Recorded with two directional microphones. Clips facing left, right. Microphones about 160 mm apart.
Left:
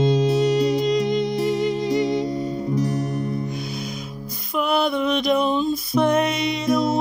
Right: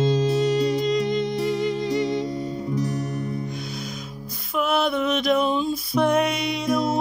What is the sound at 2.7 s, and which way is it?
Music, 35° left (ahead or behind).